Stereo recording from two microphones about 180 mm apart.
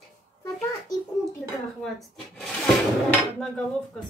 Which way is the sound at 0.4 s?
20° left (ahead or behind).